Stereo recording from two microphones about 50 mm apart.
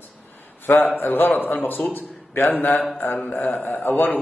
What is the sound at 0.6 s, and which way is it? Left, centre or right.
A man's voice, left.